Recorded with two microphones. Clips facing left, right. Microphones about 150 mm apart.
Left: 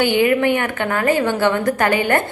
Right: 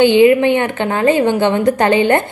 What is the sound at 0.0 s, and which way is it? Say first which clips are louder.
A woman's voice: right 6 dB; 20° right (ahead or behind).